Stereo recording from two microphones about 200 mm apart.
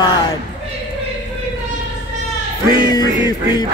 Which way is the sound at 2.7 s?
20° left (ahead or behind).